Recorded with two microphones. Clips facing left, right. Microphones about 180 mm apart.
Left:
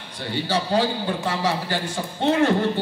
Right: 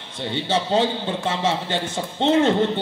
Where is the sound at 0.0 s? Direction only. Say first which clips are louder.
Right 1 dB; 25° right (ahead or behind).